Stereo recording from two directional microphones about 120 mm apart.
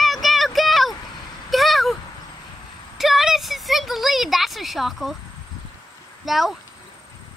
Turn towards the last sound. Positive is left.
turn(degrees=0)  # may be behind; listen again after turning